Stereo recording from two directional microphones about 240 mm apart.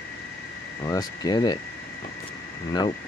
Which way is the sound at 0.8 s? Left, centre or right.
Centre.